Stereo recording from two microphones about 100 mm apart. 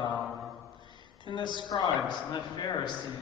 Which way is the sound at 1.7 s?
40° left (ahead or behind).